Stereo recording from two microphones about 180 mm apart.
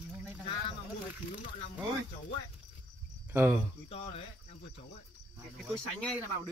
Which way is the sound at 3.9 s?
35° left (ahead or behind).